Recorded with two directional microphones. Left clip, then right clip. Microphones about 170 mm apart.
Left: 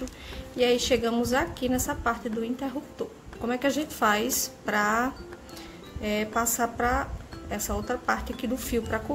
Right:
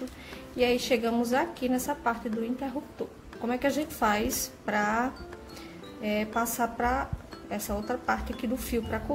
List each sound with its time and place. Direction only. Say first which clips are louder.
0.6 s a woman's voice: left 2 dB; 5° left (ahead or behind)